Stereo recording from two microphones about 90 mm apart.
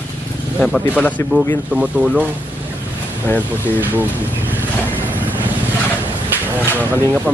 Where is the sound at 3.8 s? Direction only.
20° right (ahead or behind).